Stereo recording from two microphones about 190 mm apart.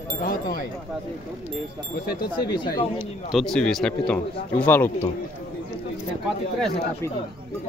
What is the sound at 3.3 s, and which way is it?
Speech, 5° left (ahead or behind).